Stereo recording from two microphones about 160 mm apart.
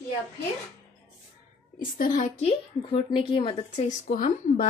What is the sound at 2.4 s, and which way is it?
A woman's voice, 30° left (ahead or behind).